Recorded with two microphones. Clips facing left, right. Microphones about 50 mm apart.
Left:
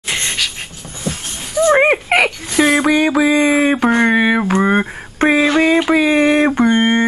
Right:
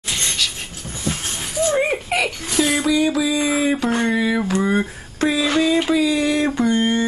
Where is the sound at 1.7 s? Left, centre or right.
Left.